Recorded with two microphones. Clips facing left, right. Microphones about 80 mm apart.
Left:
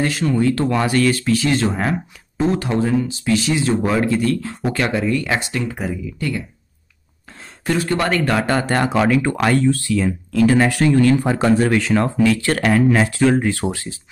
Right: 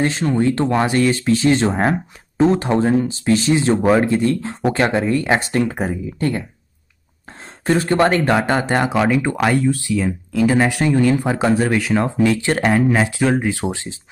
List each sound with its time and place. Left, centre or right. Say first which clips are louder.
0.0 s speech: right 1 dB; right
7.6 s speech: right 4 dB; right; by 12.1 s centre
12.2 s speech: even; right